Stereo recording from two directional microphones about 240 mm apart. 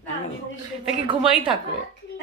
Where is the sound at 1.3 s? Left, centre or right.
Right.